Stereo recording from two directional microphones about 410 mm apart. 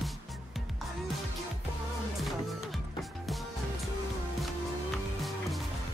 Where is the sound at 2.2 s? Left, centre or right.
Centre.